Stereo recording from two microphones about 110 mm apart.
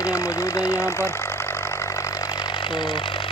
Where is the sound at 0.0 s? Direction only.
30° left (ahead or behind).